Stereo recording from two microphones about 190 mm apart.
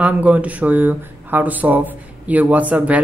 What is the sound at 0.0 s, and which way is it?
Speech, 5° right (ahead or behind).